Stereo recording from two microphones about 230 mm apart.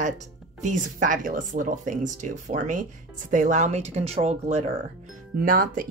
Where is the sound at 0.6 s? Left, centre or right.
Right.